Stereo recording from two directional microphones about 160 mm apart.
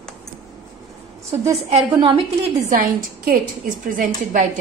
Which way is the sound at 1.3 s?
40° right (ahead or behind).